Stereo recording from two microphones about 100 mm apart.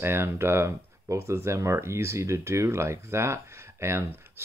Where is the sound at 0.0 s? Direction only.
25° right (ahead or behind).